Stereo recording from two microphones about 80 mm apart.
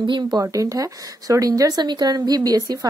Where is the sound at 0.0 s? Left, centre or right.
Right.